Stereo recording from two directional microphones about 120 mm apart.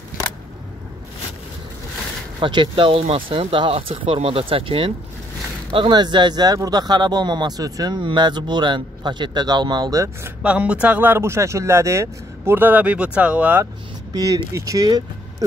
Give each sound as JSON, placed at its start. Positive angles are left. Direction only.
{"t": 2.4, "sound": "speech", "side_deg": -40}
{"t": 10.4, "sound": "speech", "side_deg": -10}
{"t": 14.1, "sound": "speech", "side_deg": -30}